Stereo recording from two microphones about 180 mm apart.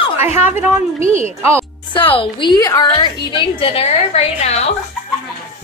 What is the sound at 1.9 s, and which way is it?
A woman's voice, 30° left (ahead or behind).